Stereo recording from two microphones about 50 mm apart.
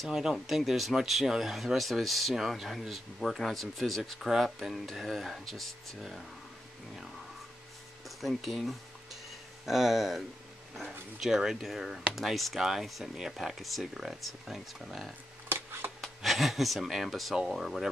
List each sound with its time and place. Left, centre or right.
0.0 s speech: centre
8.2 s speech: centre
15.4 s a sound: right
16.0 s speech: centre